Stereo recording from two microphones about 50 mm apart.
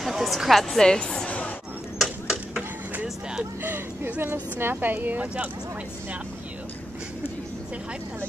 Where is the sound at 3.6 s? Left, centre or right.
Right.